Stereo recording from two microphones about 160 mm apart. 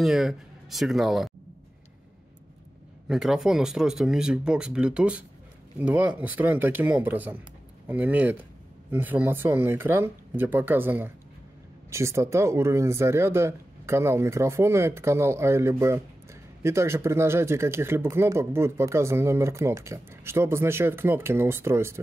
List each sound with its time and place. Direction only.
0.0 s speech: centre (ahead or behind)
3.1 s speech: centre (ahead or behind)